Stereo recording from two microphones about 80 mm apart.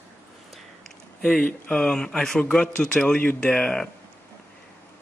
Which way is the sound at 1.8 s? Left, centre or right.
Centre.